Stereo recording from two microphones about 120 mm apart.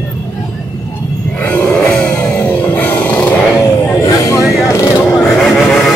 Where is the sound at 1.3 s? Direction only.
15° left (ahead or behind).